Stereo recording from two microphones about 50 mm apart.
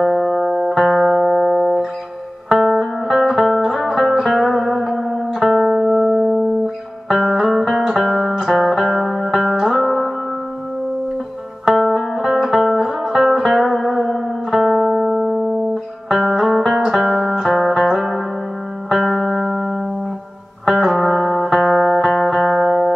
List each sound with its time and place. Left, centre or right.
0.0 s music: centre
5.8 s music: centre
6.0 s music: centre
11.6 s music: centre
14.6 s music: centre